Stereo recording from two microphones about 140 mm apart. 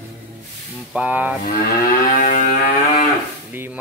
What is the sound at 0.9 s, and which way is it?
Speech, 10° right (ahead or behind).